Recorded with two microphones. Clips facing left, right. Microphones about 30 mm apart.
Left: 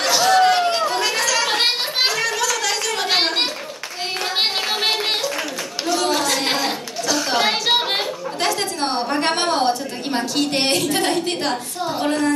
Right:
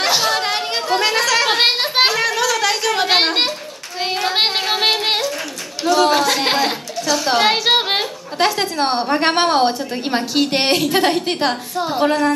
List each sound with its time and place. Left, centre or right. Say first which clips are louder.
0.0 s chatter: left 2 dB; right
4.0 s child singing: right 4 dB; centre
5.9 s a sound: right 5 dB; centre
7.2 s a woman's voice: right 4 dB; centre